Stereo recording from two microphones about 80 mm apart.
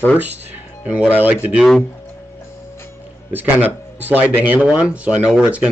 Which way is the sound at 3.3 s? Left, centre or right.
Right.